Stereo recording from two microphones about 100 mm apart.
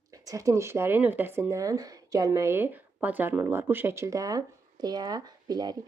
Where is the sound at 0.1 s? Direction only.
35° right (ahead or behind).